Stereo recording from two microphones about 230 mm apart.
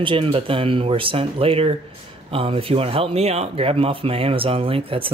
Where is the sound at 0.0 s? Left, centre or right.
Right.